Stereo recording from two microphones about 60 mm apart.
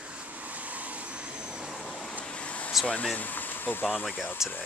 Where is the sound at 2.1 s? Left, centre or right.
Left.